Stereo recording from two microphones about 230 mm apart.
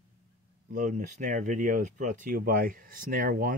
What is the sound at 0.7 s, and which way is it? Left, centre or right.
Speech, right.